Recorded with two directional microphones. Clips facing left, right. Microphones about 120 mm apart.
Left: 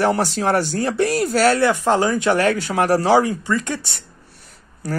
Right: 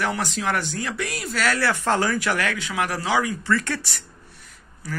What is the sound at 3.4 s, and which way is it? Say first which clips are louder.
Speech: left 2 dB; 20° left (ahead or behind).